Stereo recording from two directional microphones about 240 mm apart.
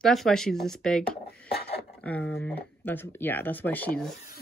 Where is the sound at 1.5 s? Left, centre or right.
Left.